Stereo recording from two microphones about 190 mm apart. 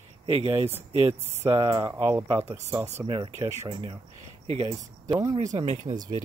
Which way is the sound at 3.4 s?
25° right (ahead or behind).